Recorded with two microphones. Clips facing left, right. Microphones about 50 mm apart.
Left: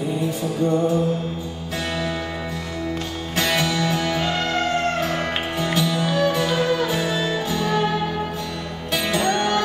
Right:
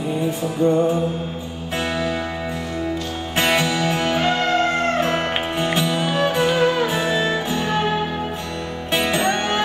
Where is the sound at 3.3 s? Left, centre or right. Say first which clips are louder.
Right 2 dB; right.